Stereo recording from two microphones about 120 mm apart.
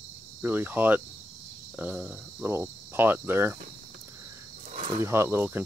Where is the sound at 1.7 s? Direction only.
10° right (ahead or behind).